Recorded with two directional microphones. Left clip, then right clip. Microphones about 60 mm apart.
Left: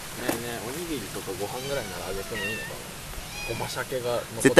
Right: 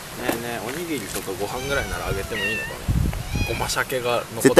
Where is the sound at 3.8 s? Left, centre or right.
Right.